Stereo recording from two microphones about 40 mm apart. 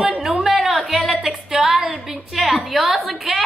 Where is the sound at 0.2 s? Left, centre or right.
Centre.